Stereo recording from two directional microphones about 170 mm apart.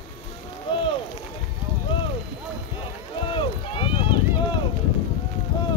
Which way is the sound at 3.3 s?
30° left (ahead or behind).